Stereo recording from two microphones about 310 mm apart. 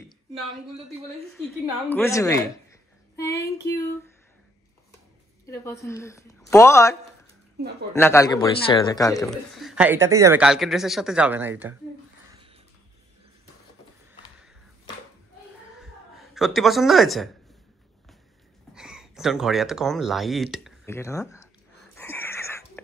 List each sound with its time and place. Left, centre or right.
1.3 s a woman's voice: centre
5.5 s a woman's voice: centre
15.8 s a sound: centre
18.8 s speech: centre
21.9 s wheeze: centre